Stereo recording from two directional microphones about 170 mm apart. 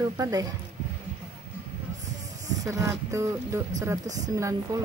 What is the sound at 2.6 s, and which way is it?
Speech, 20° right (ahead or behind).